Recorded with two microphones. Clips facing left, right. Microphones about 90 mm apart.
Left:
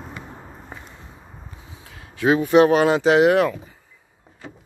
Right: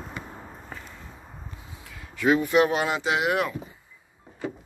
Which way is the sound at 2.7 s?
40° left (ahead or behind).